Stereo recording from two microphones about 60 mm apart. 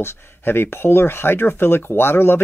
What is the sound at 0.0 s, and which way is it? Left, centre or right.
Speech, left.